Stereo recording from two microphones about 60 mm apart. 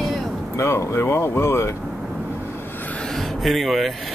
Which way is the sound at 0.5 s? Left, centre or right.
Left.